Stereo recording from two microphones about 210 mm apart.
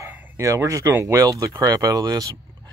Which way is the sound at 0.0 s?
15° right (ahead or behind).